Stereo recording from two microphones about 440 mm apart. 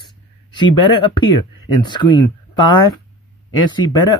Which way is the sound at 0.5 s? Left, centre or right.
Centre.